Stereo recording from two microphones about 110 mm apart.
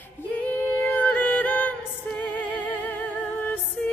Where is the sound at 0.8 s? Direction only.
15° left (ahead or behind).